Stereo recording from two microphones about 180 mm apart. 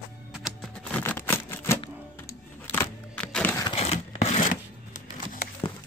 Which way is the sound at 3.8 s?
35° left (ahead or behind).